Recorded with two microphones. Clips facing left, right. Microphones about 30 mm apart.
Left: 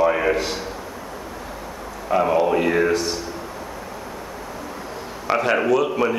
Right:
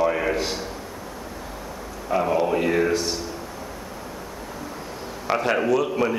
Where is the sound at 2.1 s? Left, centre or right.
Centre.